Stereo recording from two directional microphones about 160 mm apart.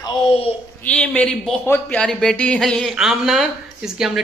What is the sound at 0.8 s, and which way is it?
Speech, 5° left (ahead or behind).